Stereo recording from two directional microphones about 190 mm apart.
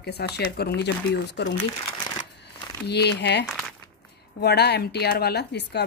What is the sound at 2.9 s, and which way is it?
Speech, 60° left (ahead or behind).